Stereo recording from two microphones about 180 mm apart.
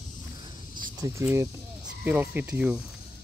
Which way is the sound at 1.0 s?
15° right (ahead or behind).